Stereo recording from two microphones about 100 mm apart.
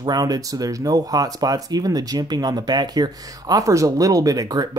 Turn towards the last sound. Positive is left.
turn(degrees=-40)  # may be behind; listen again after turning